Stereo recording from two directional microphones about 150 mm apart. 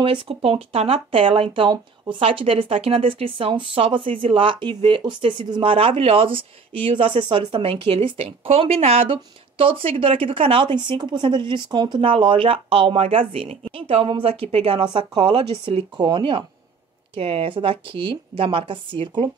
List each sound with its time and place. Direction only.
0.0 s speech: 35° right (ahead or behind)